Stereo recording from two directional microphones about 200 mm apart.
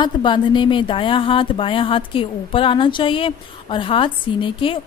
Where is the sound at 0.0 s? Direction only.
25° left (ahead or behind).